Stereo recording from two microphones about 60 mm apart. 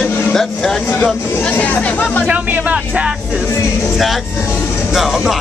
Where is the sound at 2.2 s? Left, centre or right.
Right.